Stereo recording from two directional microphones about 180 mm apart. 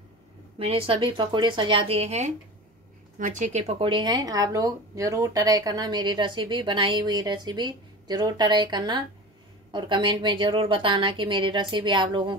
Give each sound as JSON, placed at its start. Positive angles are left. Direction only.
{"t": 0.6, "sound": "speech", "side_deg": -30}